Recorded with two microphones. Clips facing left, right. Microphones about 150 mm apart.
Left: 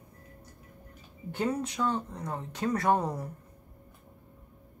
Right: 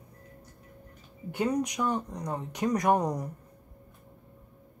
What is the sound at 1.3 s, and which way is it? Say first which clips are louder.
Speech: right 2 dB; 15° right (ahead or behind).